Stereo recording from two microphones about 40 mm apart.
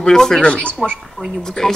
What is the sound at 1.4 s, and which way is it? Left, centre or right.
Speech, centre.